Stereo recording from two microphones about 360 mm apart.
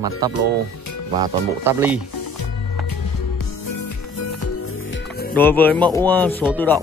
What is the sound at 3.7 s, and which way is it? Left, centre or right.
Music, left.